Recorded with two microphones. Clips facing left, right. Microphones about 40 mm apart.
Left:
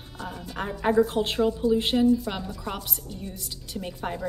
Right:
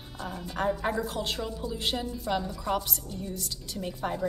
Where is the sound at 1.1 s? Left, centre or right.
Left.